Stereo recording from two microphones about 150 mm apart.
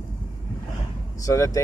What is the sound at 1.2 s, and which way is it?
Speech, 20° left (ahead or behind).